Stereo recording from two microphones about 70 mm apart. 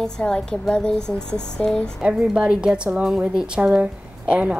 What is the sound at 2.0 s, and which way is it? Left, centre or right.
A woman's voice, centre.